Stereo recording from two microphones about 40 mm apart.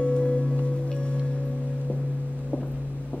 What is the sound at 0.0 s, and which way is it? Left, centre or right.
Music, left.